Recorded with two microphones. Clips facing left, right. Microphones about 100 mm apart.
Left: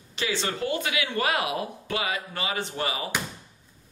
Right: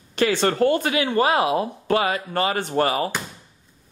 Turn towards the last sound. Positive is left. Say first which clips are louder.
# right 9 dB
turn(degrees=-50)  # may be behind; listen again after turning